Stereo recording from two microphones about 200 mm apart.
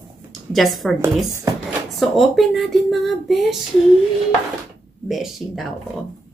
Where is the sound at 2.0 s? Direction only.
Centre (ahead or behind).